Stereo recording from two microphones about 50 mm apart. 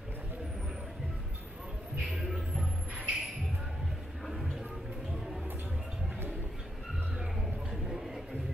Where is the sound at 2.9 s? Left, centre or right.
Centre.